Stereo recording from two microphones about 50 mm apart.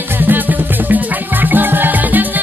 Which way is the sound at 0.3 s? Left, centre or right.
Right.